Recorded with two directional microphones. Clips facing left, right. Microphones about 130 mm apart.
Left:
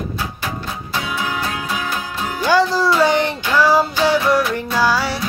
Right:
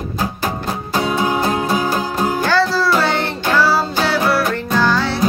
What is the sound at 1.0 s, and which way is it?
Music, 35° right (ahead or behind).